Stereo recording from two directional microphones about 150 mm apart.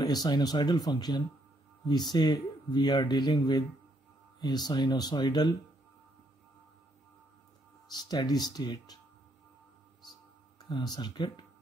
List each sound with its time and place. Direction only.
0.0 s speech: 25° left (ahead or behind)
7.9 s speech: 25° left (ahead or behind)
10.7 s speech: 30° left (ahead or behind)